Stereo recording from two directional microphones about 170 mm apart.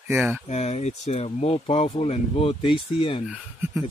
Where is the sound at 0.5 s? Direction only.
40° left (ahead or behind).